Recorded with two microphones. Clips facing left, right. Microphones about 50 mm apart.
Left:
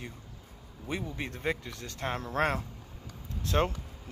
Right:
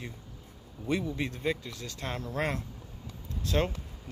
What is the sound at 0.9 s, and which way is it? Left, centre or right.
Speech, centre.